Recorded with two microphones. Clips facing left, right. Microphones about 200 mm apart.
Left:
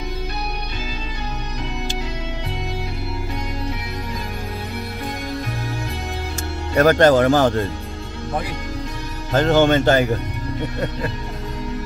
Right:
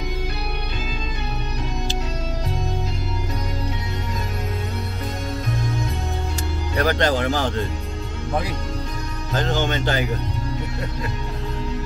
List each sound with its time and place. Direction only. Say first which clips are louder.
6.8 s speech: left 7 dB; 50° left (ahead or behind)
9.3 s speech: left 8 dB; 55° left (ahead or behind)